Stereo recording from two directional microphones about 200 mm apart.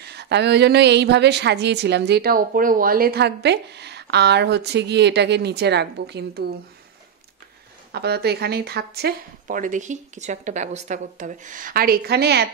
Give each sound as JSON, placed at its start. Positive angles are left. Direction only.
{"t": 0.0, "sound": "a woman's voice", "side_deg": -55}
{"t": 7.9, "sound": "speech", "side_deg": -55}